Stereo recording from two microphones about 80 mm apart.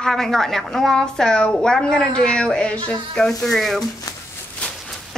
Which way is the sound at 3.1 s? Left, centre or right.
Centre.